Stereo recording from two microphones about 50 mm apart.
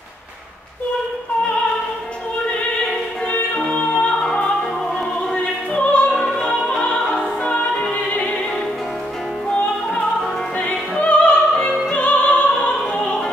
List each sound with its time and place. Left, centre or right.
3.5 s music: centre
5.3 s music: centre
6.8 s opera: centre
8.0 s music: left
10.6 s opera: left
11.9 s music: left